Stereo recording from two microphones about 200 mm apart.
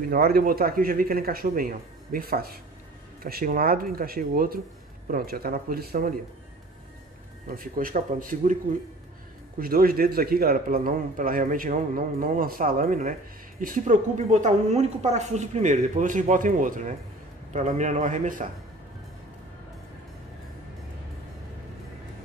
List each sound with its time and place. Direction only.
0.1 s a man's voice: 50° right (ahead or behind)
7.4 s a man's voice: 45° right (ahead or behind)
9.6 s a man's voice: 45° right (ahead or behind)